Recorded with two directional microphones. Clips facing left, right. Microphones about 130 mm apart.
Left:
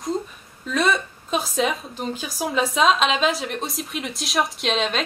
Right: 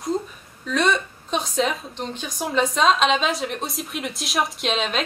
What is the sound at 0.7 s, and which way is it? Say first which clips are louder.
A woman's voice: even; 5° left (ahead or behind).